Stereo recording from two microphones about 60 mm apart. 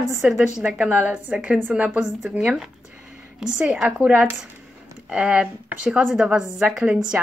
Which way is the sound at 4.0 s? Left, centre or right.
Right.